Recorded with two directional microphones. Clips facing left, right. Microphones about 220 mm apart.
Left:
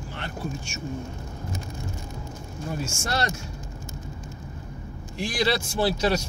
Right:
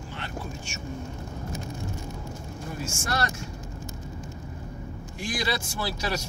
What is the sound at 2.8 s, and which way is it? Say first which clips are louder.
Speech: even; 25° left (ahead or behind).